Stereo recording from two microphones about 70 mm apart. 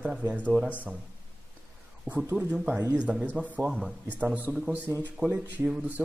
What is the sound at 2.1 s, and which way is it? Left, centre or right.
Speech, right.